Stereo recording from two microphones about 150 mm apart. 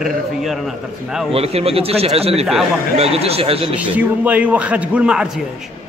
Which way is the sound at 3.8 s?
10° right (ahead or behind).